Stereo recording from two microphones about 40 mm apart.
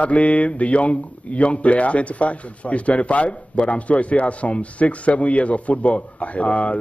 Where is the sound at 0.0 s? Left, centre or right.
Left.